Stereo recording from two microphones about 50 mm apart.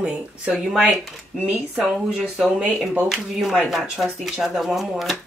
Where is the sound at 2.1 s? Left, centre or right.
Centre.